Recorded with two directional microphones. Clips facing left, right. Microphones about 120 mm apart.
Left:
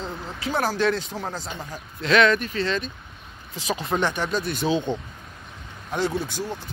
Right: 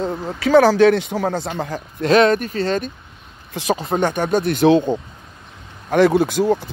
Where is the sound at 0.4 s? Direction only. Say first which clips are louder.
Right 12 dB; 90° right.